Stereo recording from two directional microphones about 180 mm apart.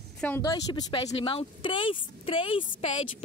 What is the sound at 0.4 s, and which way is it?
Speech, 20° left (ahead or behind).